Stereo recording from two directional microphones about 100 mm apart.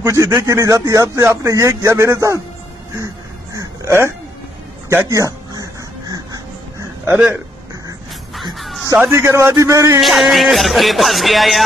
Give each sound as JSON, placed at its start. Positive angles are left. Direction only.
{"t": 0.0, "sound": "speech", "side_deg": -30}
{"t": 3.5, "sound": "a sound", "side_deg": -30}
{"t": 5.1, "sound": "a sound", "side_deg": -35}
{"t": 8.5, "sound": "music", "side_deg": 0}
{"t": 8.9, "sound": "a man's voice", "side_deg": -20}
{"t": 9.9, "sound": "speech", "side_deg": 0}